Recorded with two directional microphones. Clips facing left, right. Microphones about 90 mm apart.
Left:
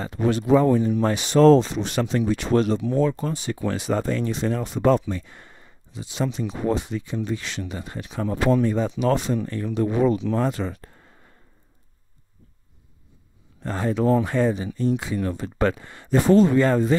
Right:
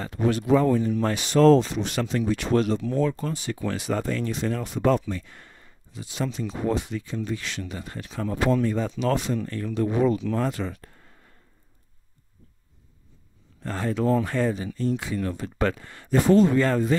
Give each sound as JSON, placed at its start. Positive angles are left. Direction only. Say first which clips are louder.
{"t": 0.0, "sound": "speech", "louder": "left 2 dB", "side_deg": 25}
{"t": 9.1, "sound": "speech", "louder": "left 3 dB", "side_deg": 30}
{"t": 13.6, "sound": "speech", "louder": "left 3 dB", "side_deg": 20}